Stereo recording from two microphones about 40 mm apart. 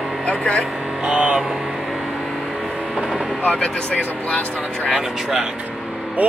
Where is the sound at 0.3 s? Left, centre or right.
Left.